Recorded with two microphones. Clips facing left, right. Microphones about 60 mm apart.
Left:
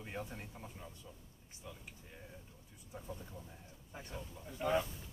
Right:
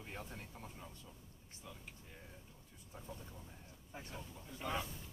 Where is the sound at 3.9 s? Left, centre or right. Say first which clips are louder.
Left 1 dB; centre.